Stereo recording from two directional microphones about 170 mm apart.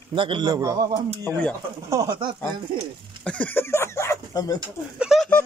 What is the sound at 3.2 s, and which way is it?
Speech, 10° left (ahead or behind).